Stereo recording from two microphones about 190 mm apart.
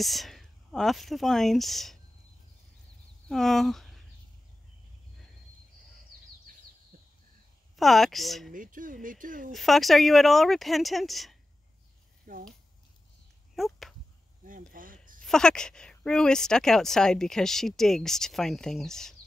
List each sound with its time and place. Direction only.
0.0 s speech: centre (ahead or behind)
3.3 s speech: centre (ahead or behind)
6.9 s a sound: 50° right (ahead or behind)
7.7 s speech: centre (ahead or behind)
8.5 s speech: 45° right (ahead or behind)
9.5 s speech: centre (ahead or behind)
12.3 s speech: 40° right (ahead or behind)
13.6 s speech: centre (ahead or behind)
14.7 s a sound: 45° right (ahead or behind)
15.2 s speech: 5° left (ahead or behind)